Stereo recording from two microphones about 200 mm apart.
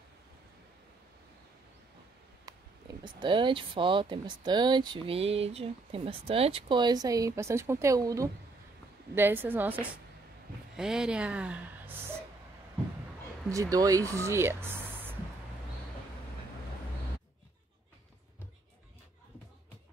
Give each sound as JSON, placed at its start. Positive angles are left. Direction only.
{"t": 2.5, "sound": "a sound", "side_deg": -20}
{"t": 3.0, "sound": "speech", "side_deg": -25}
{"t": 10.8, "sound": "speech", "side_deg": -5}
{"t": 13.5, "sound": "speech", "side_deg": -15}